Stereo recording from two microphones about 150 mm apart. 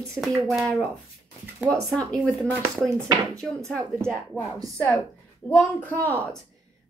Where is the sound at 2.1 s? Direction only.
5° left (ahead or behind).